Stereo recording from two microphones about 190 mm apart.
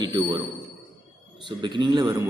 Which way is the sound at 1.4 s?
25° right (ahead or behind).